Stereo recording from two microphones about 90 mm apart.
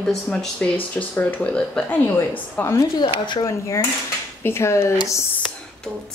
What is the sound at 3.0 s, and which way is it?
Speech, 60° left (ahead or behind).